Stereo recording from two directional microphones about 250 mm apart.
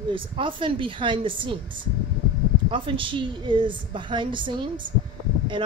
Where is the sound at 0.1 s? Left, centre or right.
Centre.